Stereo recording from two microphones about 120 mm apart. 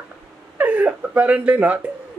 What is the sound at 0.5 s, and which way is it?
Speech, 10° right (ahead or behind).